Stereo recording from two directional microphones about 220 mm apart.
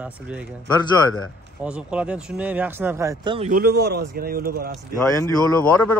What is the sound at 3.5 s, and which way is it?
Speech, 45° right (ahead or behind).